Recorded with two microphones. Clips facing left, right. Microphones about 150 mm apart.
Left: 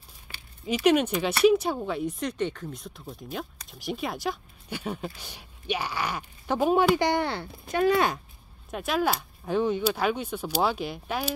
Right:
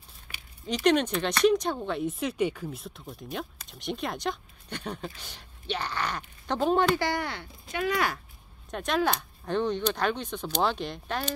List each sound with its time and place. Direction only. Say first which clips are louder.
0.3 s a sound: left 1 dB; 20° left (ahead or behind)
0.7 s speech: left 2 dB; 10° left (ahead or behind)
7.1 s speech: left 5 dB; 25° left (ahead or behind)
8.6 s speech: left 1 dB; 5° left (ahead or behind)